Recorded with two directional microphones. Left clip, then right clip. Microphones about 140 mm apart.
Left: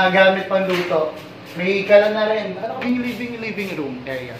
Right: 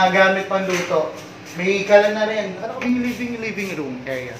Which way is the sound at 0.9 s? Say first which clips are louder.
Even; 35° right (ahead or behind).